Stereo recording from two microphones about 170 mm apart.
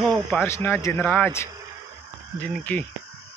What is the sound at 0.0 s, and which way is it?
Speech, 5° left (ahead or behind).